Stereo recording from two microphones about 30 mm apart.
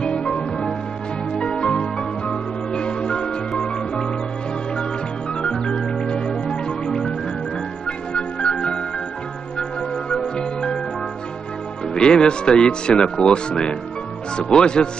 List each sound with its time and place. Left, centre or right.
0.0 s music: left
5.4 s music: left
10.1 s music: left
11.9 s speech: left